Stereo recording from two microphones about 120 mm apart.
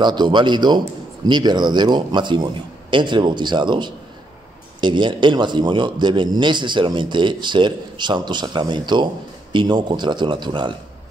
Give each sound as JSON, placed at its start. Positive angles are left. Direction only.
{"t": 0.0, "sound": "a man's voice", "side_deg": -40}